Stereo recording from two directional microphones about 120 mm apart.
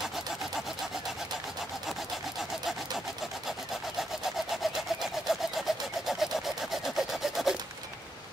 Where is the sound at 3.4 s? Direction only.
Centre (ahead or behind).